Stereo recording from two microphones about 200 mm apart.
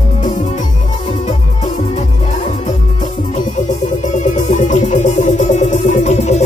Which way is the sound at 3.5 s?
40° left (ahead or behind).